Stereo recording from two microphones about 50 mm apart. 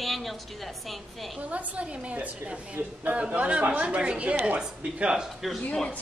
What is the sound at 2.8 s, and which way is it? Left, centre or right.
Speech, right.